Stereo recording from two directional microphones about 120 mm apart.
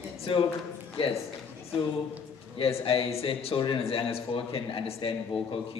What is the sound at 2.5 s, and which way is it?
A man's voice, 50° left (ahead or behind).